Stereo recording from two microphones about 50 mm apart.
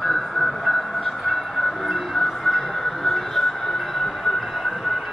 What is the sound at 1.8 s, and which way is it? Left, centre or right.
Train, centre.